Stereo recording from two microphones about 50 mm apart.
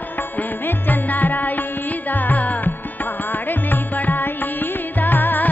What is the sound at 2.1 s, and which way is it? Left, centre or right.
Carnatic music, left.